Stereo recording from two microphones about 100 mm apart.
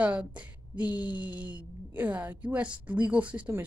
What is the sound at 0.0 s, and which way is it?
A woman's voice, 15° right (ahead or behind).